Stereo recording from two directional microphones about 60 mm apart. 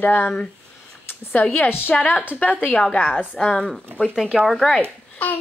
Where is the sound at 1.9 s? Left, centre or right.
Left.